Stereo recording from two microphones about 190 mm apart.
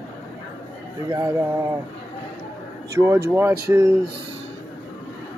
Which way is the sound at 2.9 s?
15° right (ahead or behind).